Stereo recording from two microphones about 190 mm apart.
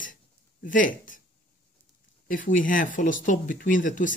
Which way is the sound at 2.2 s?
45° left (ahead or behind).